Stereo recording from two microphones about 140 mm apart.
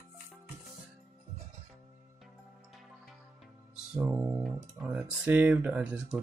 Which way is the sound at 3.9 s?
20° right (ahead or behind).